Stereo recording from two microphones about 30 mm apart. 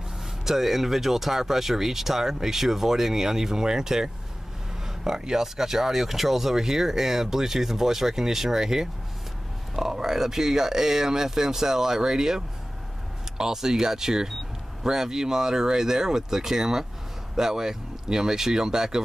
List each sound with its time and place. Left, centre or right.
0.5 s speech: centre